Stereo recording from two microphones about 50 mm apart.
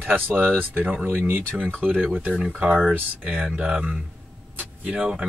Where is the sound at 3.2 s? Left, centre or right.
Right.